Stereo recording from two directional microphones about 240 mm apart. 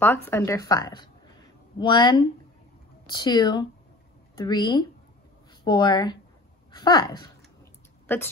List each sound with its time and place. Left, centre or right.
0.0 s a woman's voice: centre